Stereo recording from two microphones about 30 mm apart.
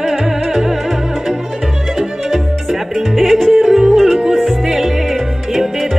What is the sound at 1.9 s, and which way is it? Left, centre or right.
Music, centre.